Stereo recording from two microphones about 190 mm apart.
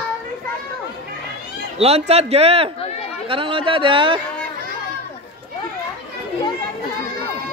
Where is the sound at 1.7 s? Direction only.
30° right (ahead or behind).